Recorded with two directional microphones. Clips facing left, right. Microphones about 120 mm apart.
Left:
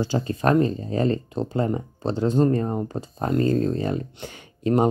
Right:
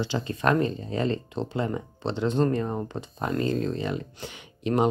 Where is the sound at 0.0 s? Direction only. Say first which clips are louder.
Left 3 dB; 40° left (ahead or behind).